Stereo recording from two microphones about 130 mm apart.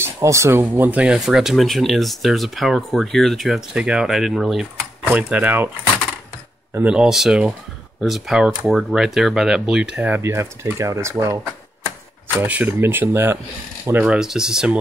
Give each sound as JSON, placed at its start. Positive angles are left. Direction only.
{"t": 0.0, "sound": "speech", "side_deg": -20}
{"t": 5.0, "sound": "speech", "side_deg": -15}
{"t": 6.7, "sound": "speech", "side_deg": -10}
{"t": 12.4, "sound": "speech", "side_deg": -15}